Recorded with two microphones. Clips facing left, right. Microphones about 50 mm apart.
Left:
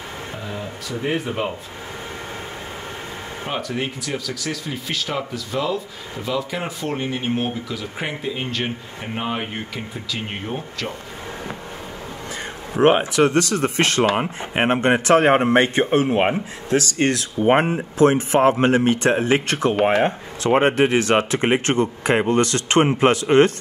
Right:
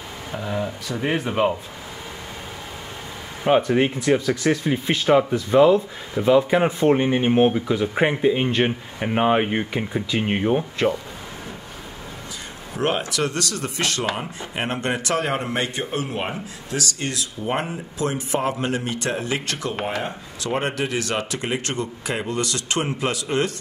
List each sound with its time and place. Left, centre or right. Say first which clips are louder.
1.0 s speech: right 3 dB; centre
3.4 s speech: right 9 dB; right
12.7 s speech: left 8 dB; left